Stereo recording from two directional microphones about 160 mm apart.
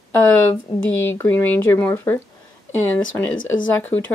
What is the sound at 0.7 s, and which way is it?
Speech, 30° left (ahead or behind).